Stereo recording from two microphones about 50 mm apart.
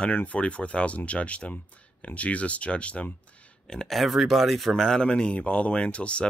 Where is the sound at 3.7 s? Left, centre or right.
Centre.